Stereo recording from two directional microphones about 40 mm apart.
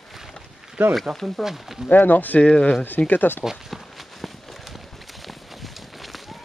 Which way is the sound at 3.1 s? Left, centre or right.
Left.